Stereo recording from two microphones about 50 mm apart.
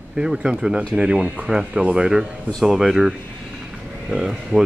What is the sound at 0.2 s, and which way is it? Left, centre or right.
Speech, centre.